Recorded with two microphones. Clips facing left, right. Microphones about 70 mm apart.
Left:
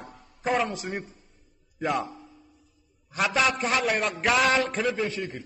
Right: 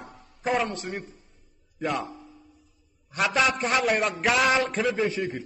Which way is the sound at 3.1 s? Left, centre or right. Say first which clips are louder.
Right 1 dB; centre.